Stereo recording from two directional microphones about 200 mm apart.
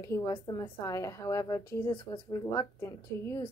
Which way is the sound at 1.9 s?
25° left (ahead or behind).